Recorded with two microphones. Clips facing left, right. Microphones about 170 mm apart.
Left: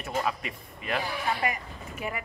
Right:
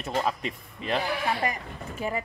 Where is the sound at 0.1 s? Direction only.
25° right (ahead or behind).